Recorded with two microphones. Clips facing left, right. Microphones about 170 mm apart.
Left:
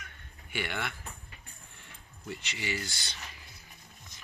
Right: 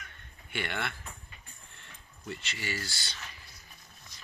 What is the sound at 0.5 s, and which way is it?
Speech, 10° left (ahead or behind).